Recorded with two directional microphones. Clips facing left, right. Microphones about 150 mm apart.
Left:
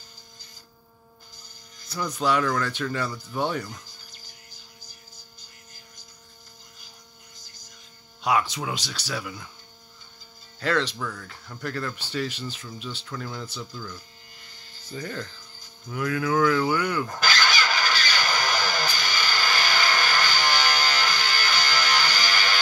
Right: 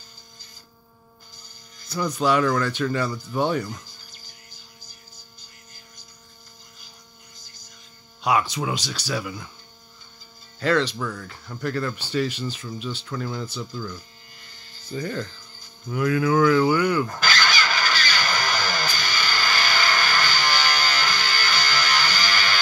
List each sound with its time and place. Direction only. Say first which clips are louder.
2.1 s speech: right 3 dB; 5° right (ahead or behind)
8.2 s speech: right 2 dB; 5° right (ahead or behind)
10.6 s speech: right 4 dB; centre (ahead or behind)
11.0 s speech: right 3 dB; 10° right (ahead or behind)
13.1 s speech: right 5 dB; 15° right (ahead or behind)
15.0 s speech: right 5 dB; 5° right (ahead or behind)
17.2 s vehicle: right 1 dB; 20° left (ahead or behind)